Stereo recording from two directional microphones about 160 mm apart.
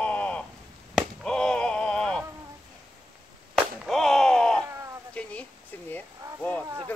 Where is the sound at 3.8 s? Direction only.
Centre (ahead or behind).